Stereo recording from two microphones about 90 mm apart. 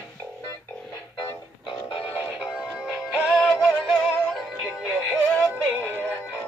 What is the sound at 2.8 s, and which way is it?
Synthetic singing, 10° right (ahead or behind).